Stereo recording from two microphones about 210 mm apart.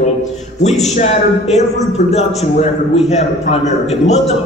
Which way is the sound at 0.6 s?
35° left (ahead or behind).